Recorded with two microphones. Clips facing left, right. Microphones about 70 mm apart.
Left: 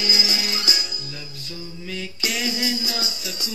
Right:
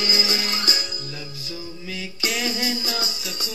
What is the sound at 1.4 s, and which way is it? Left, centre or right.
Mantra, centre.